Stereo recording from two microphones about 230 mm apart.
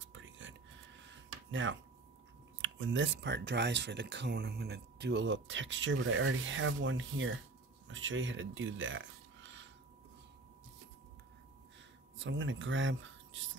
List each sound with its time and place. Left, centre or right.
0.0 s a sound: right
2.6 s speech: right
12.2 s speech: right